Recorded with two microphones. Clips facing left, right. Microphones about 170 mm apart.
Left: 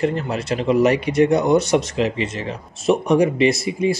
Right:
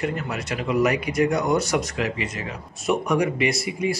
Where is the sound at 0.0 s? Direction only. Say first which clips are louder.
Left 6 dB; 30° left (ahead or behind).